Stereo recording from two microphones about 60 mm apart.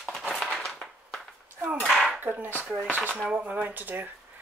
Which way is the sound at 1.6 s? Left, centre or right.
Right.